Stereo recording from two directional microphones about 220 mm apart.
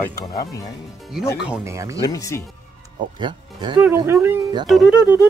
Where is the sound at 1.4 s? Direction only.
10° right (ahead or behind).